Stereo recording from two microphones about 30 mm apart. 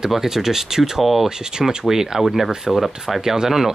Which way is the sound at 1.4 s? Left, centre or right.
Right.